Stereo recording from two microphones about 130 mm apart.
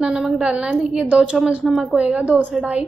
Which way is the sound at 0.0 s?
5° right (ahead or behind).